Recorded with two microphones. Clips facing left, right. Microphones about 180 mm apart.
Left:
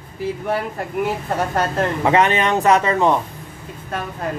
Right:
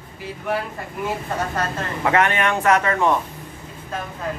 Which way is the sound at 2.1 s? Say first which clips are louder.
Left 2 dB; 20° left (ahead or behind).